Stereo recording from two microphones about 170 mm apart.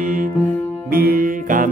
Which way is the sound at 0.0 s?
55° right (ahead or behind).